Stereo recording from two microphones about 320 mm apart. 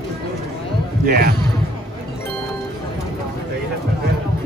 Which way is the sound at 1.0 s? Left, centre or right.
Right.